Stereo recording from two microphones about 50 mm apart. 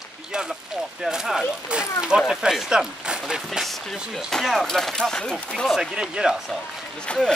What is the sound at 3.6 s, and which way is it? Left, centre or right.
Speech, centre.